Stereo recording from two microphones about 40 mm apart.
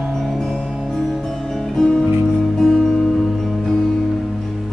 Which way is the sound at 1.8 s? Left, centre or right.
Centre.